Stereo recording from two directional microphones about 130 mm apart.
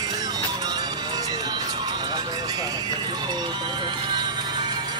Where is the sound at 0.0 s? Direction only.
30° right (ahead or behind).